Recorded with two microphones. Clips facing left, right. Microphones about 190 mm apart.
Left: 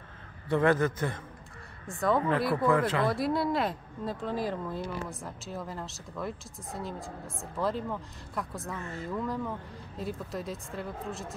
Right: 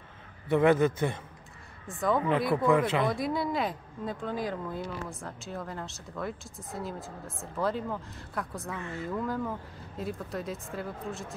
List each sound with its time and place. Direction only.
0.5 s a man's voice: 20° right (ahead or behind)
1.9 s speech: centre (ahead or behind)
2.5 s a man's voice: 20° right (ahead or behind)
3.1 s speech: centre (ahead or behind)